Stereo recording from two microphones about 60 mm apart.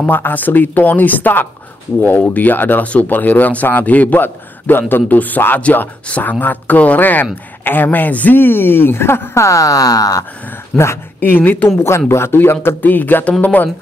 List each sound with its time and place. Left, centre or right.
0.1 s speech: left
10.7 s speech: centre
11.1 s speech: left